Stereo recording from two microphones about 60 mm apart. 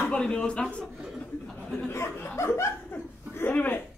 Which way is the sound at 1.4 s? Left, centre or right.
Centre.